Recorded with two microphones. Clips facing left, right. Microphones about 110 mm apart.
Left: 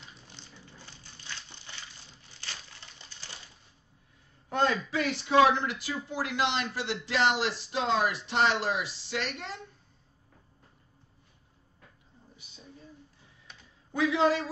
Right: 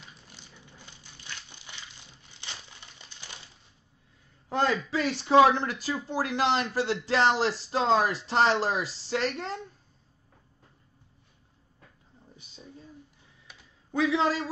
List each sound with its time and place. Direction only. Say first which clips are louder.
0.3 s crumpling: left 1 dB; 15° right (ahead or behind)
4.6 s a man's voice: right 2 dB; 30° right (ahead or behind)
13.5 s typing: even; 5° right (ahead or behind)
13.9 s speech: even; 30° right (ahead or behind)